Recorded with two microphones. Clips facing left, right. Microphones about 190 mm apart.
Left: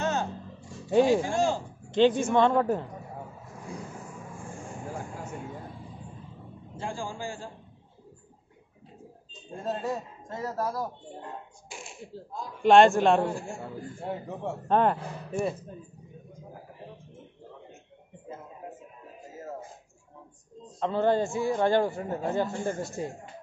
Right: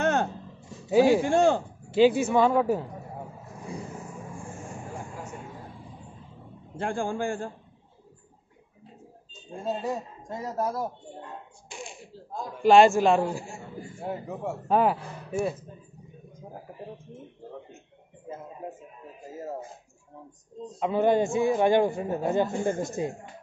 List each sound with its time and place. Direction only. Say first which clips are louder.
0.0 s a sound: right 4 dB; 60° right (ahead or behind)
0.8 s a man's voice: right 2 dB; 5° right (ahead or behind)
1.2 s a man's voice: right 5 dB; 60° right (ahead or behind)
1.9 s a man's voice: right 2 dB; 5° right (ahead or behind)
6.8 s a man's voice: right 6 dB; 55° right (ahead or behind)
9.7 s a man's voice: right 1 dB; 10° right (ahead or behind)
11.7 s a sound: right 4 dB; centre (ahead or behind)
12.6 s a man's voice: right 1 dB; 5° right (ahead or behind)
20.8 s a man's voice: right 2 dB; 15° right (ahead or behind)